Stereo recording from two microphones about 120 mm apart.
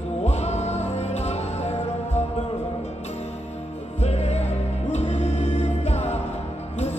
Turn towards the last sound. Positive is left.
turn(degrees=65)  # may be behind; listen again after turning